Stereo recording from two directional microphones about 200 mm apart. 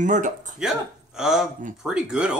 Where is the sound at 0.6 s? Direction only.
5° right (ahead or behind).